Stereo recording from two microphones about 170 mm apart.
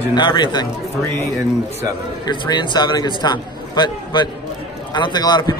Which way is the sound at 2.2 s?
25° left (ahead or behind).